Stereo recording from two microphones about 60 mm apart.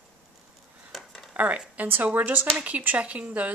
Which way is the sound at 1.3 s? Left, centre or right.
Right.